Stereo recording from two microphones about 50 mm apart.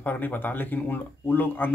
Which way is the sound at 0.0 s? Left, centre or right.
Left.